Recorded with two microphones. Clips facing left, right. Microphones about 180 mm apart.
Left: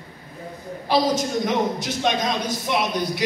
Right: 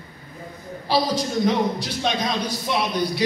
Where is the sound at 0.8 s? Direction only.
20° left (ahead or behind).